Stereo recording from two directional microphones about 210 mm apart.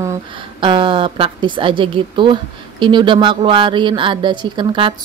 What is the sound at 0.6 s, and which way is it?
A woman's voice, 25° right (ahead or behind).